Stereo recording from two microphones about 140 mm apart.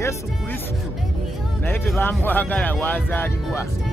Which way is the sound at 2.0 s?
15° left (ahead or behind).